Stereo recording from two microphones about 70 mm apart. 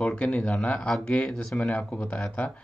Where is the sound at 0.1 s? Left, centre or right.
Centre.